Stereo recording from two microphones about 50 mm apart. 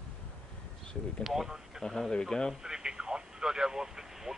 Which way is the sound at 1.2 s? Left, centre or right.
Centre.